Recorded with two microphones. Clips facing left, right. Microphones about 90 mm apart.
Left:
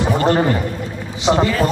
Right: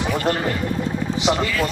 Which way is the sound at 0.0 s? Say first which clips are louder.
Left 6 dB; 35° left (ahead or behind).